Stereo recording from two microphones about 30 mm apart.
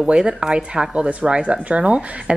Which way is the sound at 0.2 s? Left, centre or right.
Right.